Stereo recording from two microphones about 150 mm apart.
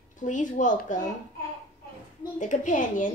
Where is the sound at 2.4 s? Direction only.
55° left (ahead or behind).